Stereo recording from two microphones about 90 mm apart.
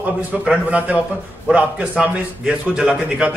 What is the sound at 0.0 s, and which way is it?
A man's voice, 15° right (ahead or behind).